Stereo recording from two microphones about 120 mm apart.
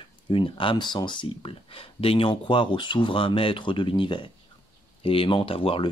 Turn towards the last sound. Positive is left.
turn(degrees=50)  # may be behind; listen again after turning